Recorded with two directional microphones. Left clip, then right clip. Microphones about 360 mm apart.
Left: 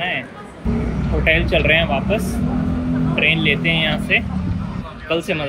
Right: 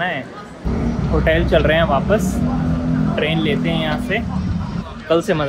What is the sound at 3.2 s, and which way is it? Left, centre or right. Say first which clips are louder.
Speech: left 4 dB; right.